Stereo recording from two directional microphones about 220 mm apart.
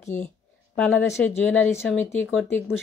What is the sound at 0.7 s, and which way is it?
Speech, 5° left (ahead or behind).